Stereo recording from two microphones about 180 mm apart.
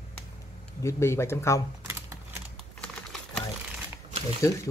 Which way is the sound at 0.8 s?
15° left (ahead or behind).